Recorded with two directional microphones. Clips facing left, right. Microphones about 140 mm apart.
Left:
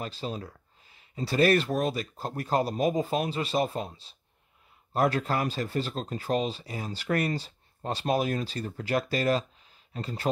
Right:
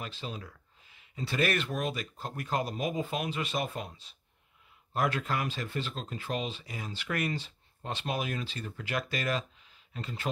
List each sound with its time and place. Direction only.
0.0 s speech: 35° left (ahead or behind)